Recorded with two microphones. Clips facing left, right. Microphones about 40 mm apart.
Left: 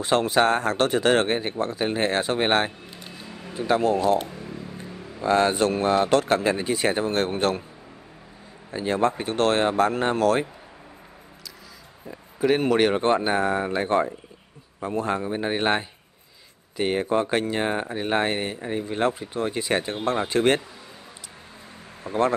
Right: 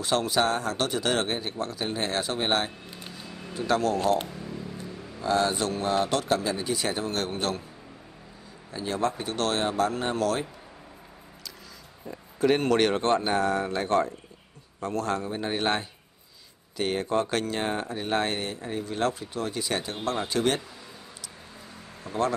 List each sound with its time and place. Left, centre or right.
0.0 s speech: left
3.2 s a sound: centre
4.4 s speech: left
8.7 s speech: left
12.1 s speech: centre; by 20.6 s left
22.0 s speech: left